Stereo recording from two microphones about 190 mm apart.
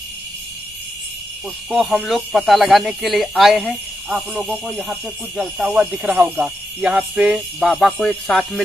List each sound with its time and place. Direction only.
1.7 s speech: centre (ahead or behind)